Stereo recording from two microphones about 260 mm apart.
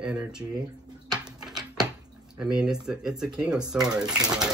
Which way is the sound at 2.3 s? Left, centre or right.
Centre.